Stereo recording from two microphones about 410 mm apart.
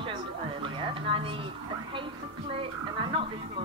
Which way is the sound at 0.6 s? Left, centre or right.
Centre.